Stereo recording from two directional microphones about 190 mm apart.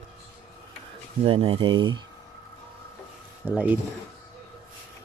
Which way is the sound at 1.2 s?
30° right (ahead or behind).